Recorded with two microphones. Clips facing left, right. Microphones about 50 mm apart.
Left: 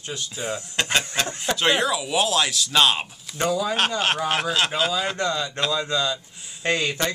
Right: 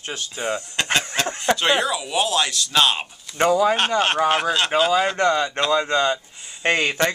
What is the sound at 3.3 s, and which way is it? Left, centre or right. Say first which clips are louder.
Speech: right 6 dB; right.